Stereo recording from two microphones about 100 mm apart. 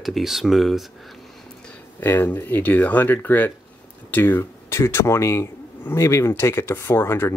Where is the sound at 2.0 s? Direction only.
20° left (ahead or behind).